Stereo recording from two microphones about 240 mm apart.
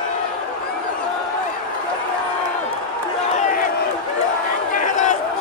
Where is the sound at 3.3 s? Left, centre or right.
Left.